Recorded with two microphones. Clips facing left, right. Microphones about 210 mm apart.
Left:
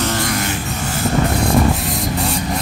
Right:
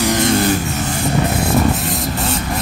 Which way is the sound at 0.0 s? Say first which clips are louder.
Right 5 dB; 20° right (ahead or behind).